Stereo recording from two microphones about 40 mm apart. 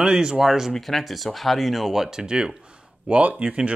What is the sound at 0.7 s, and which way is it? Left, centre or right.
Speech, centre.